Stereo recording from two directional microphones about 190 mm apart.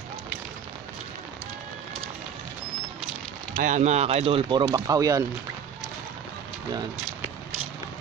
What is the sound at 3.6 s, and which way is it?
Speech, 40° right (ahead or behind).